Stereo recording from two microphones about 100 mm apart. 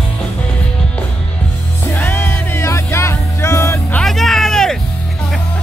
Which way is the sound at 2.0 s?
20° left (ahead or behind).